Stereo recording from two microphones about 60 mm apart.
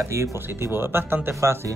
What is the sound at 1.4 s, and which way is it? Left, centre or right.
Speech, right.